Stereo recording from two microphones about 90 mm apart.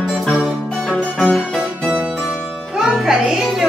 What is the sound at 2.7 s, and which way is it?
Music, 5° right (ahead or behind).